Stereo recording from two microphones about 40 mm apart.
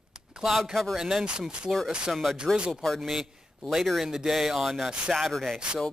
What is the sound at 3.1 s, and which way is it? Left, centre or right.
A man's voice, centre.